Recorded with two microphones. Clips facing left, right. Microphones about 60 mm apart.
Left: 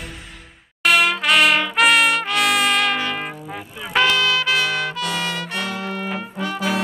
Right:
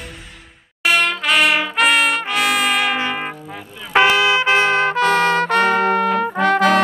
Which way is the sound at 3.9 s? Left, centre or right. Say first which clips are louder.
Right 4 dB; right.